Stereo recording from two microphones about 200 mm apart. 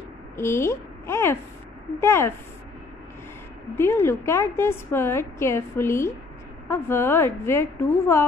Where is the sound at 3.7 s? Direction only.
10° left (ahead or behind).